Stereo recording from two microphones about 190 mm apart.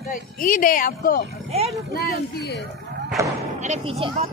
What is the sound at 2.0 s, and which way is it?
Speech, 55° left (ahead or behind).